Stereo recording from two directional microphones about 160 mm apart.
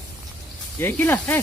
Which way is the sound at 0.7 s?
15° left (ahead or behind).